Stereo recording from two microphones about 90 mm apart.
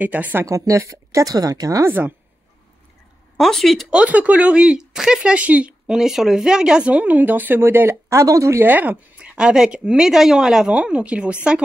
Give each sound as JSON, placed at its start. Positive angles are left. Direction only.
{"t": 0.0, "sound": "speech", "side_deg": -15}
{"t": 0.5, "sound": "a woman's voice", "side_deg": -35}
{"t": 1.9, "sound": "a woman's voice", "side_deg": -20}
{"t": 3.3, "sound": "speech", "side_deg": 5}
{"t": 3.9, "sound": "speech", "side_deg": -15}
{"t": 5.9, "sound": "speech", "side_deg": -5}